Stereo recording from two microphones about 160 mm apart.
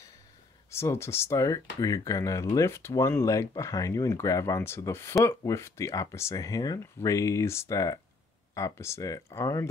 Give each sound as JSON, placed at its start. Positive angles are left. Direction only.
{"t": 0.7, "sound": "speech", "side_deg": 15}